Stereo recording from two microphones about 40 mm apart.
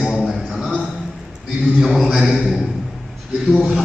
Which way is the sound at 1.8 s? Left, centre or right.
Centre.